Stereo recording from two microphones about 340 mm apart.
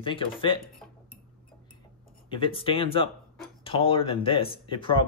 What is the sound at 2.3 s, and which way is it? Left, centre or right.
Speech, centre.